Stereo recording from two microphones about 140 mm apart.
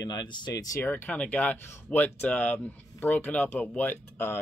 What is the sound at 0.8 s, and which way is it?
Speech, 10° left (ahead or behind).